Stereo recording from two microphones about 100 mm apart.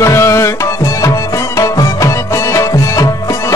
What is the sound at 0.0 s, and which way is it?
Tabla, 30° left (ahead or behind).